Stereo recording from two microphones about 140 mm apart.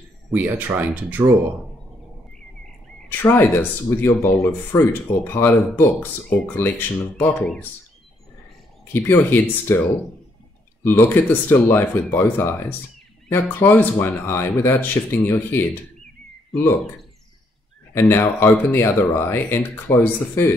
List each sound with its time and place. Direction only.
0.3 s speech: 10° right (ahead or behind)
3.1 s speech: 15° left (ahead or behind)
8.9 s speech: 15° left (ahead or behind)
17.9 s speech: 15° left (ahead or behind)